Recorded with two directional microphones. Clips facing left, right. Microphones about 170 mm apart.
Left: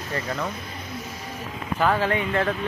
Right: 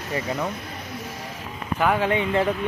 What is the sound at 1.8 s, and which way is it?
Speech, 15° right (ahead or behind).